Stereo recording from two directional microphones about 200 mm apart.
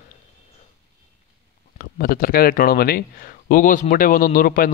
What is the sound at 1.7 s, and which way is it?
Speech, 45° left (ahead or behind).